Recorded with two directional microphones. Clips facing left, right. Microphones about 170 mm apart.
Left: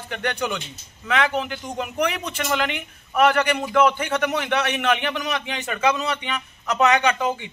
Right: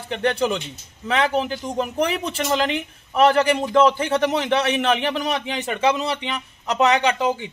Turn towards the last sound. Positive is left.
turn(degrees=-30)  # may be behind; listen again after turning